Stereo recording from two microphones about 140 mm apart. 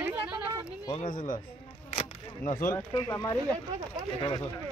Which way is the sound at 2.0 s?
65° left (ahead or behind).